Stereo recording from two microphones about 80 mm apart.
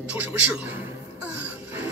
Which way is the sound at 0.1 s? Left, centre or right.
Right.